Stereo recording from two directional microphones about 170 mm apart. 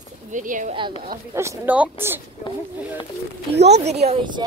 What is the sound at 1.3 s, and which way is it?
Speech, 15° right (ahead or behind).